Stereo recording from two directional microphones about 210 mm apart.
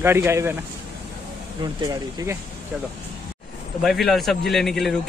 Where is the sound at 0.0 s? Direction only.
10° right (ahead or behind).